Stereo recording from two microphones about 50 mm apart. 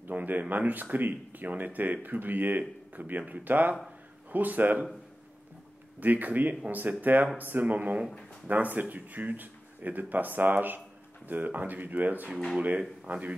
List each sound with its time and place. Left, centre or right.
0.0 s speech: right
5.9 s speech: right